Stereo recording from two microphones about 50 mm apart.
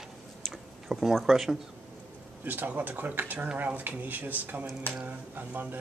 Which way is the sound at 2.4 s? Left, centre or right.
Right.